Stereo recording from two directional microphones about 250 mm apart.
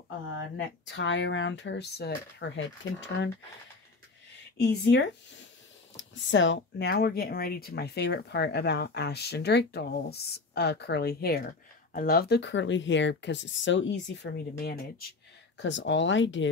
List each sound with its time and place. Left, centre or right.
0.6 s speech: left
4.6 s speech: left